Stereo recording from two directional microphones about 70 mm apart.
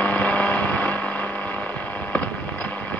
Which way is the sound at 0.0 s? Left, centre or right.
Centre.